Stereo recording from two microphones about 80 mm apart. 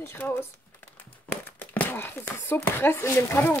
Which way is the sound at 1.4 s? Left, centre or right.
Left.